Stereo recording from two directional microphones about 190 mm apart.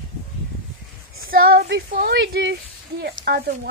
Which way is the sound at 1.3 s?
55° right (ahead or behind).